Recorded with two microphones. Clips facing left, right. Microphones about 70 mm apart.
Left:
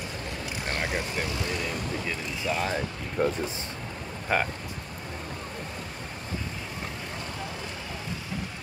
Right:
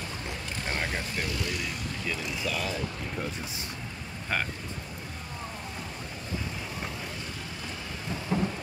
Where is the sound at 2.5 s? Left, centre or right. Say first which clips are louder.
Left 5 dB; left.